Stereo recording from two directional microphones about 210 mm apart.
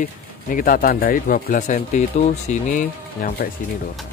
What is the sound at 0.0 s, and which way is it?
Speech, 40° left (ahead or behind).